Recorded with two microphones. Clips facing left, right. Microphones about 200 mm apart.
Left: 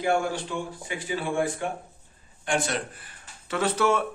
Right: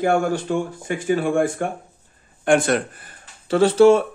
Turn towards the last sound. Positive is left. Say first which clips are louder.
# right 11 dB
turn(degrees=-30)  # may be behind; listen again after turning